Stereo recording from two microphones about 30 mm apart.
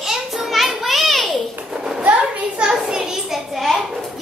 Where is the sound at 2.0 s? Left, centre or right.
Right.